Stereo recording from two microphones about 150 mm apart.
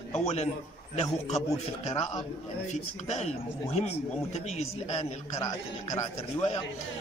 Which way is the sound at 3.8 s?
45° left (ahead or behind).